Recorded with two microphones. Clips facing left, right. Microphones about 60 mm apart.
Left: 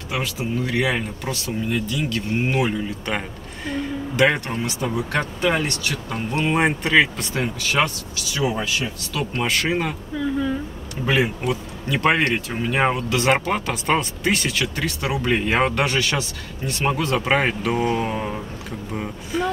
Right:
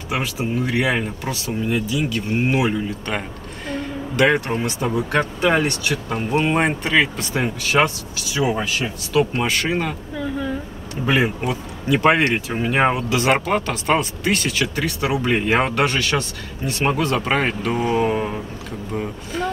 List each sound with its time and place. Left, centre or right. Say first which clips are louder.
0.1 s speech: right 2 dB; centre
3.1 s a sound: even; centre
4.8 s speech: right 3 dB; centre
7.4 s speech: right 3 dB; right
8.3 s speech: right 2 dB; centre
9.3 s speech: right 1 dB; centre
11.4 s speech: right 1 dB; centre
12.6 s speech: right 2 dB; centre
13.1 s speech: right 2 dB; centre
17.9 s mantra: right 4 dB; centre
18.9 s speech: even; centre